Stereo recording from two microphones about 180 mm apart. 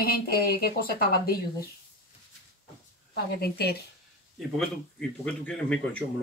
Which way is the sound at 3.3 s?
60° left (ahead or behind).